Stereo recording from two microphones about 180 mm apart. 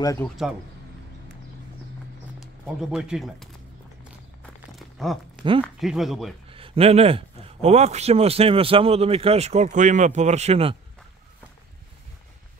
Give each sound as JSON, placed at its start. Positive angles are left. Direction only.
{"t": 0.0, "sound": "speech", "side_deg": 15}
{"t": 2.4, "sound": "speech", "side_deg": 0}
{"t": 4.4, "sound": "a sound", "side_deg": 0}
{"t": 5.8, "sound": "speech", "side_deg": 0}
{"t": 6.5, "sound": "a man's voice", "side_deg": -30}